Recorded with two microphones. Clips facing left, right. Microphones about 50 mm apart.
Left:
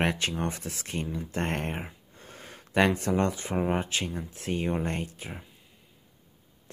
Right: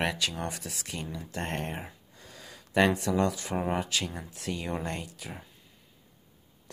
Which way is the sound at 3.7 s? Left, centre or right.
Left.